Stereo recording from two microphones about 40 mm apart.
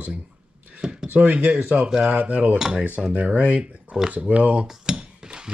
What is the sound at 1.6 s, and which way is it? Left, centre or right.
Speech, right.